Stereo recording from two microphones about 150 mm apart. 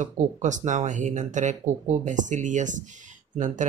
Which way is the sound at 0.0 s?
55° right (ahead or behind).